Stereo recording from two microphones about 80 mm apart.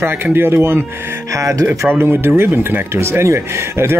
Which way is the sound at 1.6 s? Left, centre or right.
Right.